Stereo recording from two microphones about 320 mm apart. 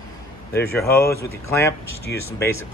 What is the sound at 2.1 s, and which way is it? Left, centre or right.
Speech, left.